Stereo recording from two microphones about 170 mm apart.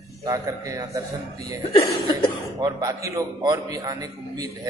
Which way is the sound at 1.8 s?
30° left (ahead or behind).